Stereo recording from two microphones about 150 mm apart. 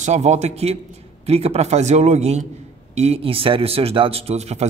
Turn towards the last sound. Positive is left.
turn(degrees=-45)  # may be behind; listen again after turning